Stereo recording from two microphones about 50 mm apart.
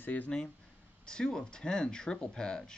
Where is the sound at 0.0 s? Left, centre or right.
Left.